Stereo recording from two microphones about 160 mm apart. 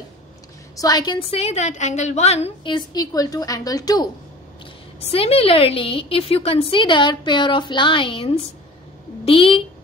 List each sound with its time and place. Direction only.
0.7 s a woman's voice: 25° left (ahead or behind)
1.4 s a woman's voice: 45° left (ahead or behind); by 4.1 s 25° left (ahead or behind)
5.0 s a woman's voice: 40° left (ahead or behind)